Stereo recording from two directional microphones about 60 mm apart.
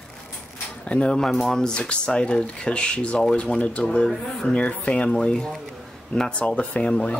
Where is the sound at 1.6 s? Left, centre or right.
Centre.